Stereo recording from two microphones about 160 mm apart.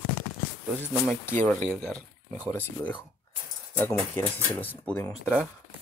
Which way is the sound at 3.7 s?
10° left (ahead or behind).